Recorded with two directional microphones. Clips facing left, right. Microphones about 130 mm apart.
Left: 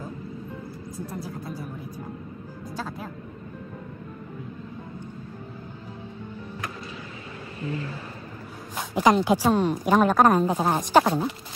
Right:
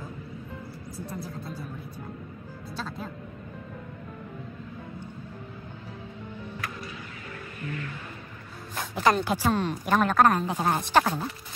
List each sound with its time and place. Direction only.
0.9 s a woman's voice: 10° left (ahead or behind)
2.7 s a woman's voice: 10° left (ahead or behind)
7.6 s music: 30° left (ahead or behind)
8.7 s a woman's voice: 15° left (ahead or behind)